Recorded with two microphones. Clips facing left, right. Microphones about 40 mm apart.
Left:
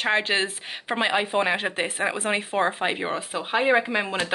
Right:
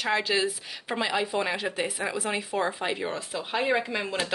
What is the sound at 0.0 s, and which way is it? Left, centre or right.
Speech, left.